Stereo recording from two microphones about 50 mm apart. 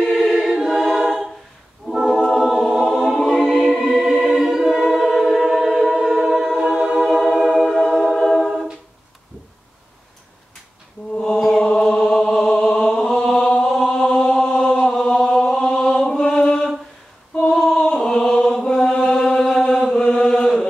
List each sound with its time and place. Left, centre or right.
0.0 s choir: centre
3.6 s music: centre
4.0 s choir: centre
5.9 s music: centre
11.5 s chant: centre
13.7 s chant: centre
16.3 s a sound: left
17.4 s female singing: centre
17.9 s chant: centre